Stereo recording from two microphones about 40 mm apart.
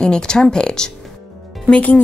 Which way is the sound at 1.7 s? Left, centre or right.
Left.